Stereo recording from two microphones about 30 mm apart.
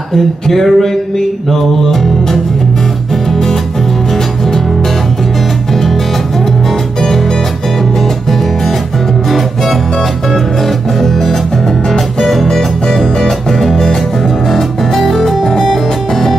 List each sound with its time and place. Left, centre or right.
0.1 s a sound: centre
3.3 s music: centre
11.0 s music: centre
12.4 s music: centre